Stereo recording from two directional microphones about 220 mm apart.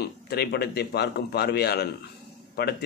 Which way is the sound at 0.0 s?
45° left (ahead or behind).